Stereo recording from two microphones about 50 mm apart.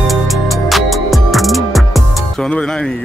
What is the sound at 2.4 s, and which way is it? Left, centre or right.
Speech, centre.